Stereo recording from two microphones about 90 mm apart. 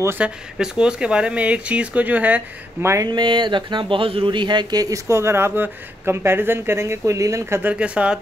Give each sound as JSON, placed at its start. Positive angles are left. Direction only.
{"t": 0.2, "sound": "speech", "side_deg": -10}
{"t": 2.8, "sound": "speech", "side_deg": -30}
{"t": 3.1, "sound": "speech", "side_deg": -60}
{"t": 7.7, "sound": "speech", "side_deg": -10}